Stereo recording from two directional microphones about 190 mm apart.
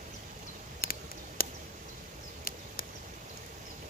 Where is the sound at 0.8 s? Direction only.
50° left (ahead or behind).